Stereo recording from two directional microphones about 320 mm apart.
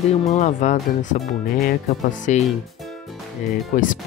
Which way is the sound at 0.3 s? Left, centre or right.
Left.